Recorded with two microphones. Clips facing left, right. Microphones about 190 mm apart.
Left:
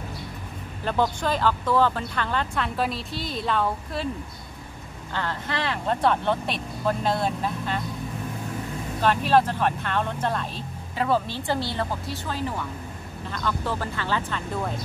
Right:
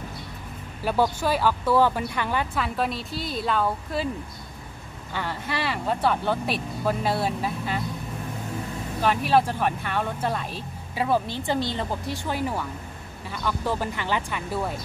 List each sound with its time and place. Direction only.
0.8 s speech: 10° right (ahead or behind)
5.1 s speech: 10° right (ahead or behind)
9.0 s speech: 10° right (ahead or behind)